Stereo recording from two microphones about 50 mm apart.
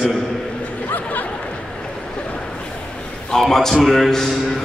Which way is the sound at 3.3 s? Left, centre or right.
Centre.